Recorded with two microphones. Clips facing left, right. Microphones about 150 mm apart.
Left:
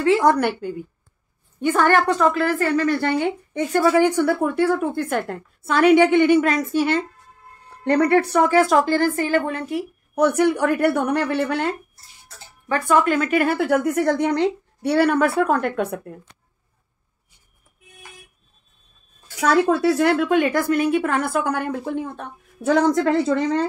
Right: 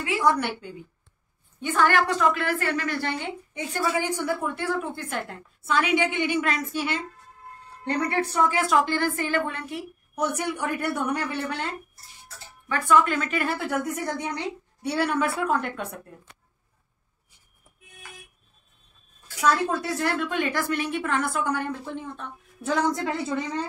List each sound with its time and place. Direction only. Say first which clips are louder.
0.2 s a woman's voice: left 6 dB; 55° left (ahead or behind)
7.8 s a woman's voice: left 9 dB; 60° left (ahead or behind)
8.5 s a woman's voice: left 6 dB; 45° left (ahead or behind)
10.1 s a woman's voice: left 10 dB; 60° left (ahead or behind)
19.4 s a woman's voice: left 7 dB; 70° left (ahead or behind)